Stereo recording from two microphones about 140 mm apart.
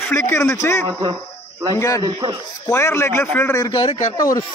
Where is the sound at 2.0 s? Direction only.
25° right (ahead or behind).